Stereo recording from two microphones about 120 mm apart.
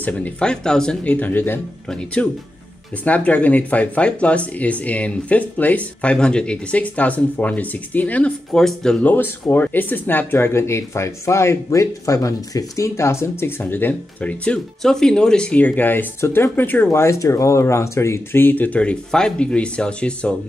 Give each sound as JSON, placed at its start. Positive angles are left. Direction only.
{"t": 0.0, "sound": "speech", "side_deg": 10}